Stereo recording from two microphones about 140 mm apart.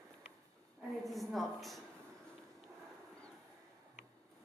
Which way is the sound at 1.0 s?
Centre (ahead or behind).